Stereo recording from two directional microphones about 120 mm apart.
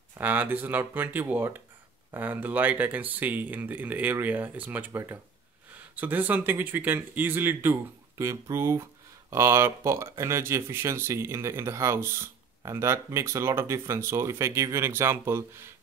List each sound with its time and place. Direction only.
0.2 s speech: 15° right (ahead or behind)